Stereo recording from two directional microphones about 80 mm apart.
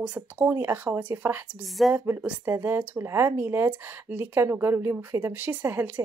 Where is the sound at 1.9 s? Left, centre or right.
Right.